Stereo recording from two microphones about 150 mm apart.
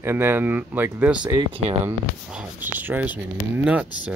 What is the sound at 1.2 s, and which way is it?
Speech, 30° right (ahead or behind).